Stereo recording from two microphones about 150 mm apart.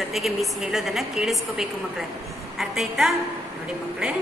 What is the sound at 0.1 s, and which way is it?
A woman's voice, centre (ahead or behind).